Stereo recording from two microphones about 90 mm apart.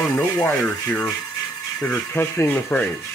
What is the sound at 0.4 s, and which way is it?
Speech, 15° left (ahead or behind).